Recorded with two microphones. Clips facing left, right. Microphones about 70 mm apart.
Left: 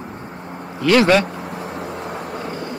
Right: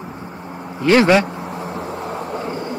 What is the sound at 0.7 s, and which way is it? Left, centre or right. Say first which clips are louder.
Speech: right 1 dB; right.